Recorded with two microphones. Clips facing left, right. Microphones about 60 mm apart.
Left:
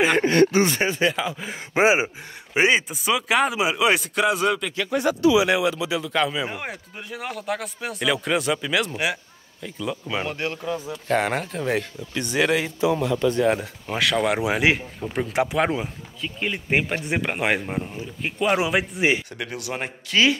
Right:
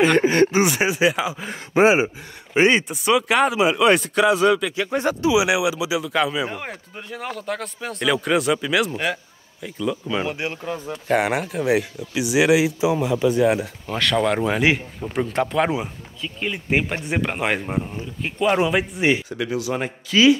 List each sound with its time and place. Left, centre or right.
0.3 s speech: centre
0.7 s speech: centre
1.7 s gasp: centre
2.5 s speech: centre
4.8 s speech: right
5.3 s speech: centre
10.2 s speech: centre
10.5 s speech: right
11.1 s speech: centre
13.8 s speech: centre